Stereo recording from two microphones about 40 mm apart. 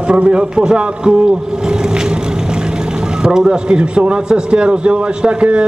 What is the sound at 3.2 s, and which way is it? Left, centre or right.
A man's voice, centre.